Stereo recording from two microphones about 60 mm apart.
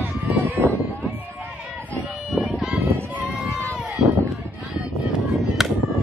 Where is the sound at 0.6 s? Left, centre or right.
Right.